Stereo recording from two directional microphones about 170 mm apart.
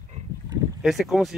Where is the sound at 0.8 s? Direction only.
Centre (ahead or behind).